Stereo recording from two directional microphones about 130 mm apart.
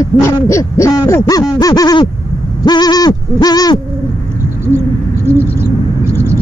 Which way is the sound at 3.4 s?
30° left (ahead or behind).